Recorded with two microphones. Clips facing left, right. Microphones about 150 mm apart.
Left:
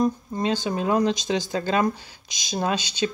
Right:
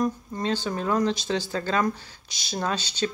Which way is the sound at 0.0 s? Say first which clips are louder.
Left 3 dB; 15° left (ahead or behind).